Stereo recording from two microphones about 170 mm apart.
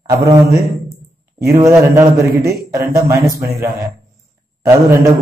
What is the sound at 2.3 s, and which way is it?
Speech, 65° right (ahead or behind).